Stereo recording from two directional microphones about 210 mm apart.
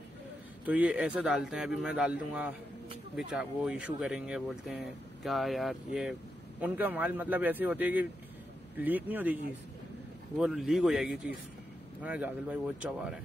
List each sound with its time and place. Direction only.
0.7 s a man's voice: 5° right (ahead or behind)